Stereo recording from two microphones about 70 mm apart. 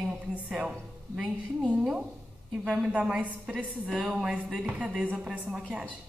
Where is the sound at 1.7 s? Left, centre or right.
Centre.